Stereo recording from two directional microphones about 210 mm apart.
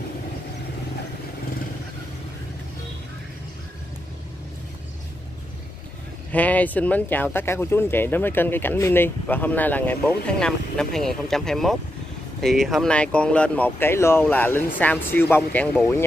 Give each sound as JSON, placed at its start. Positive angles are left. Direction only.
{"t": 6.3, "sound": "speech", "side_deg": 5}